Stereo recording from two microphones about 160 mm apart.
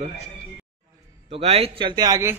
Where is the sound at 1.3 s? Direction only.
35° right (ahead or behind); by 2.3 s 20° right (ahead or behind).